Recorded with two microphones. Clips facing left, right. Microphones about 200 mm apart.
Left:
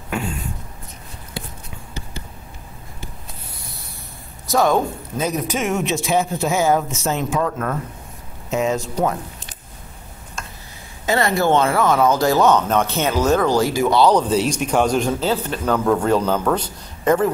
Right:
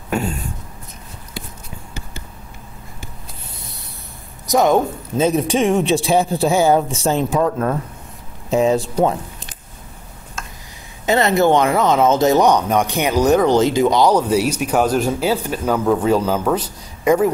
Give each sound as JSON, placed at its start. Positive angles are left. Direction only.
{"t": 4.5, "sound": "a man's voice", "side_deg": -20}
{"t": 11.1, "sound": "speech", "side_deg": -20}